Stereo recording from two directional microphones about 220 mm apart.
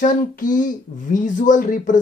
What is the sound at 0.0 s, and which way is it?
Speech, 35° left (ahead or behind).